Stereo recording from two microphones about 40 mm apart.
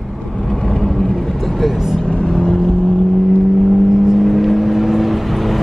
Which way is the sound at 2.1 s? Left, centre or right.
Left.